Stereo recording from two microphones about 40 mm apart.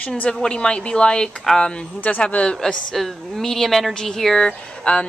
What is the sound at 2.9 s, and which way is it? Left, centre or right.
Speech, centre.